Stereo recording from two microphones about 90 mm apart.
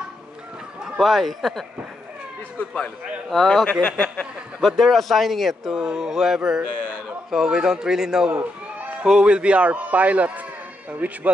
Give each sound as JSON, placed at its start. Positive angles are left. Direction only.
{"t": 0.9, "sound": "speech", "side_deg": 0}
{"t": 3.3, "sound": "a man's voice", "side_deg": 0}